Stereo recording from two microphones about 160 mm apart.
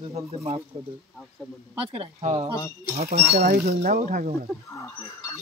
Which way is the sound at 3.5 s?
75° right (ahead or behind).